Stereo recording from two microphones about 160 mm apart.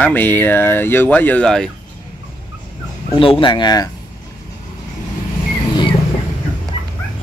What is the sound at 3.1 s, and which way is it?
Speech, 30° left (ahead or behind).